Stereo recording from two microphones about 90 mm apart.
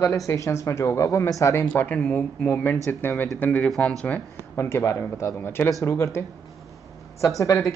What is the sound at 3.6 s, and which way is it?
Speech, 5° left (ahead or behind).